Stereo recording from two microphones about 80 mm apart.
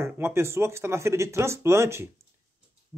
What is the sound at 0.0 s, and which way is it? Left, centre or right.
Speech, right.